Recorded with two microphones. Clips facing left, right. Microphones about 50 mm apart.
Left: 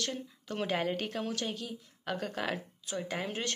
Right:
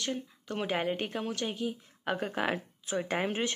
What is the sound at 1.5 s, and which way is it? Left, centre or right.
A woman's voice, right.